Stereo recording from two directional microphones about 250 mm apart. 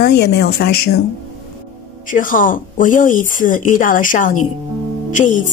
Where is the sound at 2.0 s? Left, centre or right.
Left.